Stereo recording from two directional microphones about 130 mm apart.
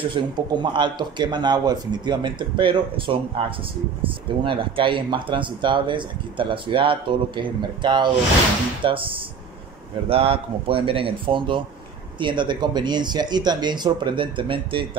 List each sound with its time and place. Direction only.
0.1 s speech: 35° right (ahead or behind)